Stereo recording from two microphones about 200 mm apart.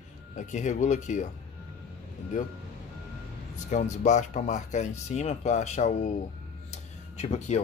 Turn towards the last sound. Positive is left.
turn(degrees=35)  # may be behind; listen again after turning